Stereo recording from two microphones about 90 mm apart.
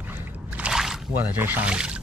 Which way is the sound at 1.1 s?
25° right (ahead or behind).